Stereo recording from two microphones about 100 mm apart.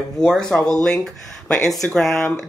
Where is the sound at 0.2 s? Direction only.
5° left (ahead or behind).